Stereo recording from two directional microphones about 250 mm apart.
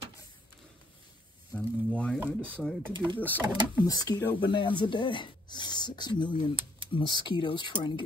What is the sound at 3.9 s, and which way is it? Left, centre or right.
Speech, centre.